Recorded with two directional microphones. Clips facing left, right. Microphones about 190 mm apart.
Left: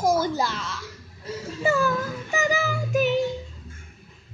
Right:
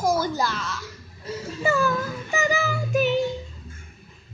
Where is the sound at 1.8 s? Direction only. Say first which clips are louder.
Even; 5° left (ahead or behind).